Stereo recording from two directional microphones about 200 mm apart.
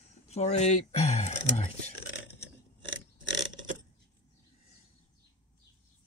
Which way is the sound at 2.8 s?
70° right (ahead or behind).